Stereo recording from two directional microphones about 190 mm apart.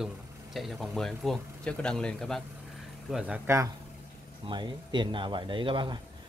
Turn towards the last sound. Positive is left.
turn(degrees=-25)  # may be behind; listen again after turning